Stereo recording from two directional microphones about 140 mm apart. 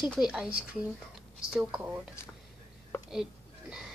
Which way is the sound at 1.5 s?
5° right (ahead or behind).